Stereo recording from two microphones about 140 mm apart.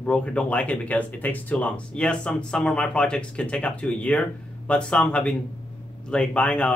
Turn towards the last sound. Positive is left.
turn(degrees=5)  # may be behind; listen again after turning